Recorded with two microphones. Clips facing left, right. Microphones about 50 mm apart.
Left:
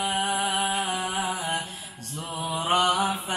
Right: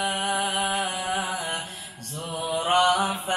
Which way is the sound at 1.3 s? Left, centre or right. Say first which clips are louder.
Left 1 dB; left.